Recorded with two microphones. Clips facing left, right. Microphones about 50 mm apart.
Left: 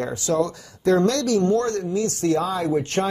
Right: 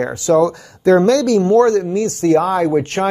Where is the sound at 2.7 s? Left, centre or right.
Right.